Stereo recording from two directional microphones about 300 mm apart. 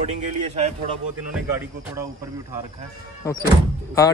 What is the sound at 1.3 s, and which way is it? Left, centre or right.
Speech, centre.